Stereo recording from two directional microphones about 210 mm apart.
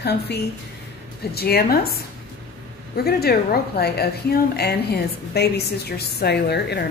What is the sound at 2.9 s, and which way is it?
A woman's voice, 50° left (ahead or behind).